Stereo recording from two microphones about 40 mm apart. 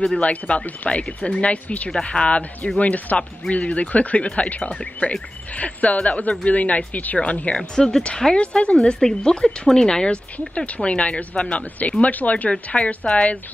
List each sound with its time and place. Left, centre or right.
0.0 s speech: left
1.9 s speech: left
2.8 s speech: left
7.5 s speech: centre
8.4 s speech: left
10.5 s speech: left
12.6 s speech: left